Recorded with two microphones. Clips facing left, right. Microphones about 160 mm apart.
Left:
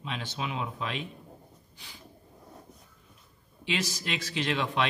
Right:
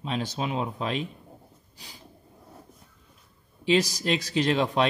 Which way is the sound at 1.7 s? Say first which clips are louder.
Right 3 dB; 40° right (ahead or behind).